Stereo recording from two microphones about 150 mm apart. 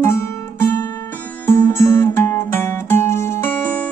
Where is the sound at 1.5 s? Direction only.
15° left (ahead or behind).